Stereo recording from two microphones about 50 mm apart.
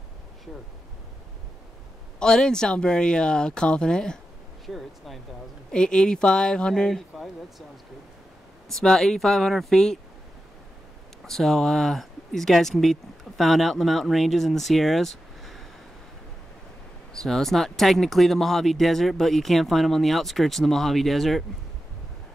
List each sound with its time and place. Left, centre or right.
2.1 s speech: centre
4.6 s speech: centre
5.7 s speech: centre
8.6 s speech: centre
11.2 s speech: centre
17.1 s speech: centre